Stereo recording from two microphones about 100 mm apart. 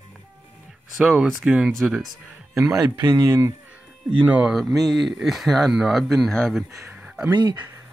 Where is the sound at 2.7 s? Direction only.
40° right (ahead or behind).